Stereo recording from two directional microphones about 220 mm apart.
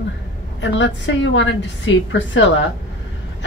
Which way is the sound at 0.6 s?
55° left (ahead or behind).